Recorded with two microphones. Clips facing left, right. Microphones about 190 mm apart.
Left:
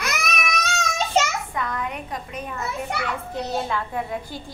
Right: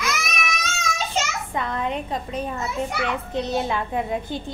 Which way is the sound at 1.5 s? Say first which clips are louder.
Right 3 dB; 25° right (ahead or behind).